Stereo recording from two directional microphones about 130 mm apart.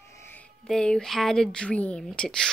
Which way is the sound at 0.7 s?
5° left (ahead or behind).